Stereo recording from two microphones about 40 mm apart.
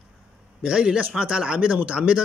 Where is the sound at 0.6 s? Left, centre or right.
Right.